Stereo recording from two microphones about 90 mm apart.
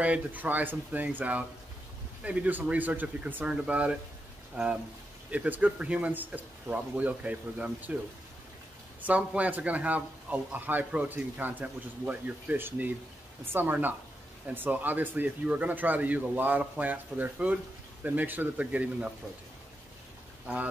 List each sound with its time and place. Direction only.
0.0 s speech: 15° right (ahead or behind)
5.3 s speech: 15° right (ahead or behind)
9.0 s speech: 15° right (ahead or behind)